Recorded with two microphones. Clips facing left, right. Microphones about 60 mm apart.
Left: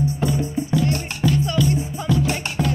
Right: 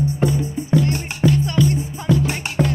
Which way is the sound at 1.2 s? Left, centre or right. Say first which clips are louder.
Right 3 dB; right.